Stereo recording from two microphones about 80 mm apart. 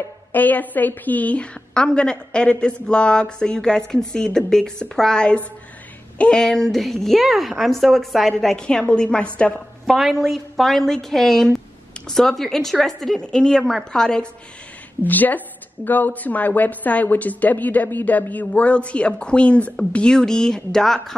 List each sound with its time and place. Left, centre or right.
0.3 s a woman's voice: left
9.8 s a woman's voice: centre
15.0 s a woman's voice: left; by 21.0 s centre